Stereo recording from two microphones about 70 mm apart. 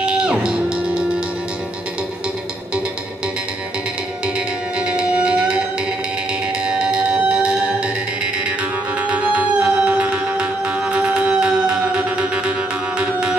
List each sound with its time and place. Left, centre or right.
0.0 s music: centre
4.7 s music: centre
6.6 s music: centre
9.0 s music: centre